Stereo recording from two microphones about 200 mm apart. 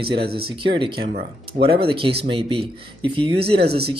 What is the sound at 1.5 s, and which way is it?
Speech, 25° right (ahead or behind).